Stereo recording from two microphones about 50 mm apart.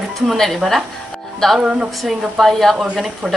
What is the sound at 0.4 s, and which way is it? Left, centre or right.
Speech, centre.